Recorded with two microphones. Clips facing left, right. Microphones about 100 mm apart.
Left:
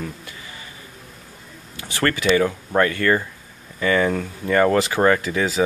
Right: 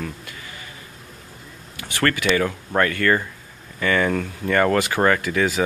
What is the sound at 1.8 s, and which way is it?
Speech, 25° left (ahead or behind).